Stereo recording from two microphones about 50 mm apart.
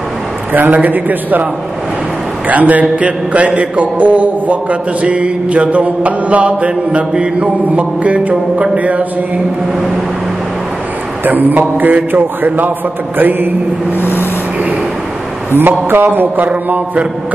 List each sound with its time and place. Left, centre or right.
0.5 s a man's voice: right
11.2 s a man's voice: right
13.9 s vehicle: left
15.5 s a man's voice: right